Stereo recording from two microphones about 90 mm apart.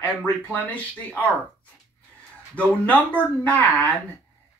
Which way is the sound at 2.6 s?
15° left (ahead or behind).